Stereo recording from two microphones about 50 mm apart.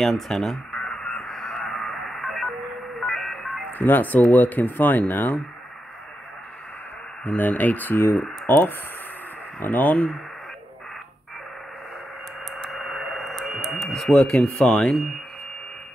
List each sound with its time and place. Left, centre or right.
0.0 s speech: centre
0.7 s radio: centre
3.0 s telephone dialing: centre
3.7 s speech: left
7.2 s speech: left
12.4 s radio: centre
14.6 s speech: centre